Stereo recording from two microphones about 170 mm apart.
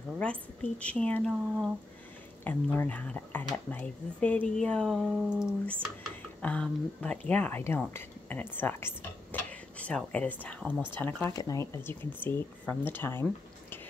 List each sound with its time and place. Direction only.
0.2 s speech: 5° left (ahead or behind)
6.4 s speech: 5° left (ahead or behind)